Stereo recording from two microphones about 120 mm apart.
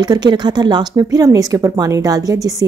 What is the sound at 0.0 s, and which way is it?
Speech, 35° right (ahead or behind).